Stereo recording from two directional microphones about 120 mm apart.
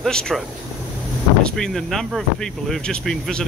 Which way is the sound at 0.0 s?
5° left (ahead or behind).